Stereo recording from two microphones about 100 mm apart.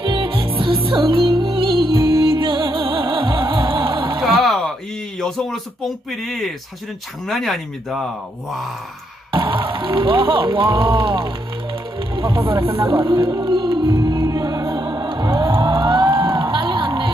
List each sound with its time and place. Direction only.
0.0 s music: 55° right (ahead or behind)
4.2 s a sound: centre (ahead or behind)
5.2 s speech: 5° left (ahead or behind)
9.3 s speech: 55° right (ahead or behind)
12.2 s music: 60° right (ahead or behind)